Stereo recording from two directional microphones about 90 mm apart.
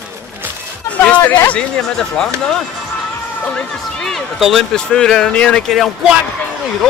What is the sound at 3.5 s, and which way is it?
Speech, 5° left (ahead or behind).